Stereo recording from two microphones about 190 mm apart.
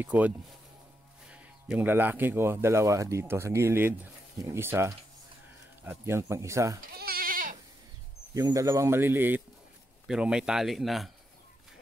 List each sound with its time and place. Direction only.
0.0 s speech: 10° right (ahead or behind)
1.3 s speech: 5° right (ahead or behind)
7.0 s goat: 50° right (ahead or behind)
8.4 s speech: 20° right (ahead or behind); by 11.1 s centre (ahead or behind)